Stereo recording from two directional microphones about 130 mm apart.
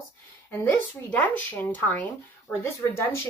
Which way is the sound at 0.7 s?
10° left (ahead or behind).